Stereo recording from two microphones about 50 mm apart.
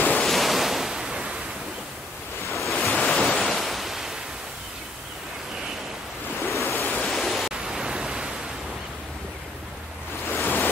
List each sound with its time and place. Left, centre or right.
0.1 s ocean: centre
2.6 s waves: centre
6.5 s waves: left
7.0 s pink noise: centre
7.6 s pink noise: centre
10.3 s waves: left